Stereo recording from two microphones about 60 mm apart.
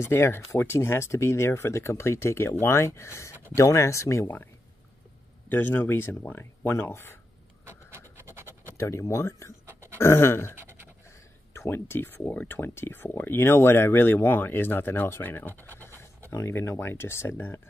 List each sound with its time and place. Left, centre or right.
0.0 s speech: left
5.5 s speech: left
8.2 s scratch: right
8.7 s speech: left
9.9 s speech: left
11.5 s speech: left
15.7 s pant: left
16.3 s speech: left